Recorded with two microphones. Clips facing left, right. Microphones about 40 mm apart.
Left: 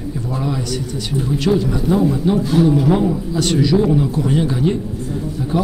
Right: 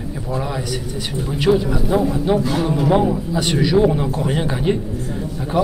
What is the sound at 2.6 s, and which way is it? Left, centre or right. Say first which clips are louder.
Speech: left 2 dB; right.